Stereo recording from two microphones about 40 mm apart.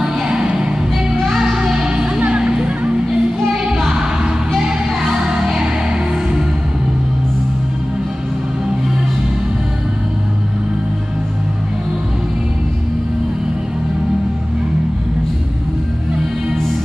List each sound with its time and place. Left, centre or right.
0.0 s music: centre
3.1 s music: centre